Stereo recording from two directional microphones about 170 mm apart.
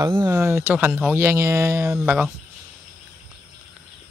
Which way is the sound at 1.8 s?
5° right (ahead or behind).